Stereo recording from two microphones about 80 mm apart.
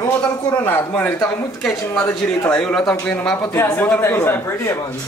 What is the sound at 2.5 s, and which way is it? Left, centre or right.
Speech, centre.